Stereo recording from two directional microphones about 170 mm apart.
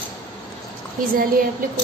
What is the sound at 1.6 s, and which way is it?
Speech, 55° right (ahead or behind).